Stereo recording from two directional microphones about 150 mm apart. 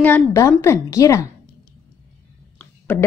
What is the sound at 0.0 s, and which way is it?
A woman's voice, 15° left (ahead or behind).